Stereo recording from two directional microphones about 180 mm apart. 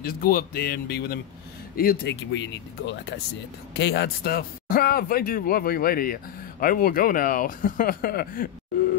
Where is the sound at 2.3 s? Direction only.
85° left.